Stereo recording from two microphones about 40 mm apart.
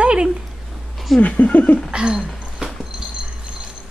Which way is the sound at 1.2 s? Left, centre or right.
Left.